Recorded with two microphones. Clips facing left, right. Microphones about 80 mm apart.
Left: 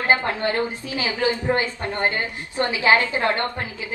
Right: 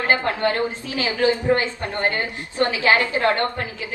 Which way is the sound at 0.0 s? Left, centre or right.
Left.